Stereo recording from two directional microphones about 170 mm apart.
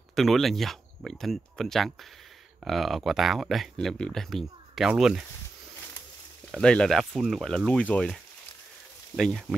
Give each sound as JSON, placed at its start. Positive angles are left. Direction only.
{"t": 0.1, "sound": "speech", "side_deg": 0}
{"t": 6.5, "sound": "speech", "side_deg": 5}